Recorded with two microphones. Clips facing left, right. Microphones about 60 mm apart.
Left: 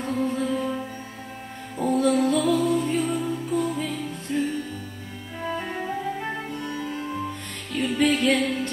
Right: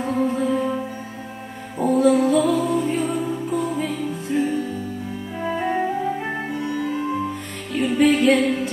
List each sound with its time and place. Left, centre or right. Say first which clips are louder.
0.0 s music: right 4 dB; centre
1.8 s music: right 4 dB; centre